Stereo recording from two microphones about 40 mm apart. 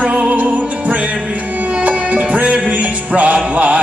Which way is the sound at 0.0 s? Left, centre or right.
Right.